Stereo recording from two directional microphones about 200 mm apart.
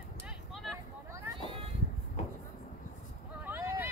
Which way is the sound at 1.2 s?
25° right (ahead or behind).